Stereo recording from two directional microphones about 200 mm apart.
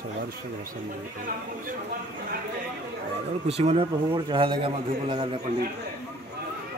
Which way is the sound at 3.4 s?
30° right (ahead or behind).